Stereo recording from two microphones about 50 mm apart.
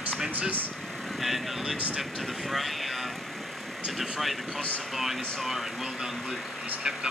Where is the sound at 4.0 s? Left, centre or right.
Centre.